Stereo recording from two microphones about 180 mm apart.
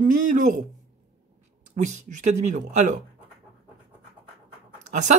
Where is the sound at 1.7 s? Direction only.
40° right (ahead or behind).